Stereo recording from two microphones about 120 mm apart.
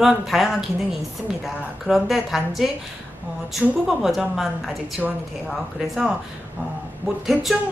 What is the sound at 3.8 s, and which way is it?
A woman's voice, centre (ahead or behind).